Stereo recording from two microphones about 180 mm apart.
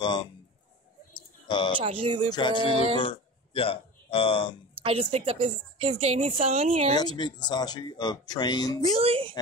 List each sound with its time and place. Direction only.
0.0 s speech: 25° left (ahead or behind)
1.1 s a sound: 25° left (ahead or behind)
1.8 s speech: 30° right (ahead or behind)
2.2 s speech: 25° left (ahead or behind)
4.8 s a woman's voice: 35° right (ahead or behind)
7.0 s speech: 25° left (ahead or behind)
8.8 s a woman's voice: 35° right (ahead or behind)